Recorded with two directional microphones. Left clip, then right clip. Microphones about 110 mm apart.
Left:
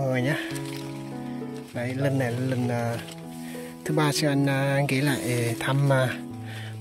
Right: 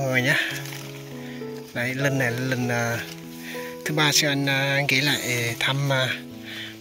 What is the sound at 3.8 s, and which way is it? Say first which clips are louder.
Speech: right 4 dB; 65° left (ahead or behind).